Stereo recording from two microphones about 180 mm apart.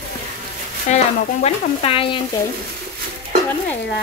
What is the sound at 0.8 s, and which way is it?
Speech, 35° left (ahead or behind).